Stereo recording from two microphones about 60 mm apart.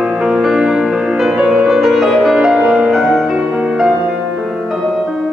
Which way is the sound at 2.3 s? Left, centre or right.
Centre.